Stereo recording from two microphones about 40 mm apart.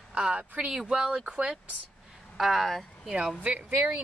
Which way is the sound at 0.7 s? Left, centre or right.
Centre.